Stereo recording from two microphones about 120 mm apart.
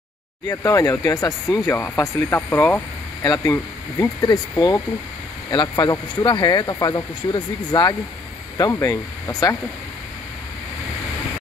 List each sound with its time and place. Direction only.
0.5 s speech: 25° left (ahead or behind)
3.2 s speech: 35° left (ahead or behind)